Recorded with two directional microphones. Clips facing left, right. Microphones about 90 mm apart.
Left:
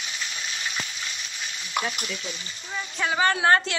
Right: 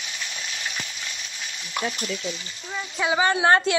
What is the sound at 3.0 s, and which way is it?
Speech, 15° right (ahead or behind).